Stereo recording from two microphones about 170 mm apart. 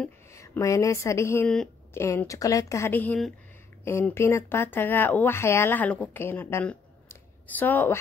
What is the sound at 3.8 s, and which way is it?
Speech, 15° left (ahead or behind).